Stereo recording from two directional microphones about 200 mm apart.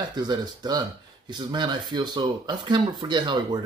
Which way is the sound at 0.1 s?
20° right (ahead or behind).